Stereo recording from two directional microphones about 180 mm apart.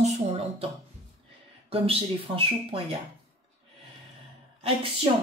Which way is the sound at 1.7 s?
30° right (ahead or behind).